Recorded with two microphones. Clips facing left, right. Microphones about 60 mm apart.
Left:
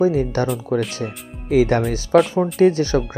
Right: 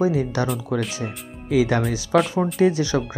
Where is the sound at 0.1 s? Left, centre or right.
Left.